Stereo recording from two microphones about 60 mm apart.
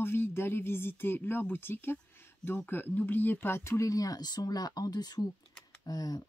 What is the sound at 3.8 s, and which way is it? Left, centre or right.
Speech, left.